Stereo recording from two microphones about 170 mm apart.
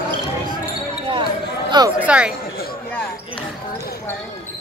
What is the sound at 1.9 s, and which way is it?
Speech, 5° right (ahead or behind).